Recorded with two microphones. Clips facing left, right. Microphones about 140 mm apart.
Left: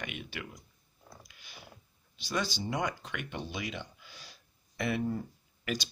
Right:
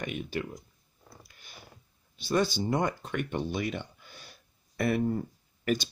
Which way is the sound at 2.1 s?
50° right (ahead or behind).